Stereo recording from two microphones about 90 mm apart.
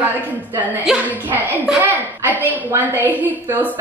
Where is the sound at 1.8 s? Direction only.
20° right (ahead or behind).